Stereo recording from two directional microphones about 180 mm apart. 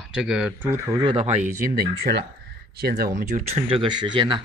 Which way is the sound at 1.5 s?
55° right (ahead or behind).